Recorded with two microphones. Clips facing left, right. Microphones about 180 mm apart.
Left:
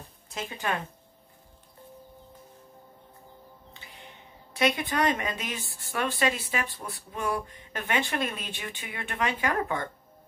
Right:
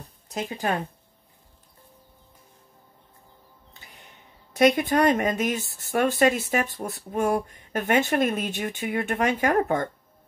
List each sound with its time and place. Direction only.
0.0 s speech: 40° right (ahead or behind)
4.6 s a woman's voice: 45° right (ahead or behind)